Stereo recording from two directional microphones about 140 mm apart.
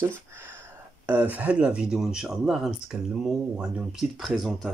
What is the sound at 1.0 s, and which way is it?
Speech, 10° right (ahead or behind).